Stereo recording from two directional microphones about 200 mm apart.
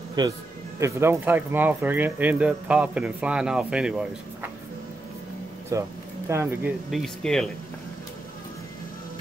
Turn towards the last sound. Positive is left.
turn(degrees=5)  # may be behind; listen again after turning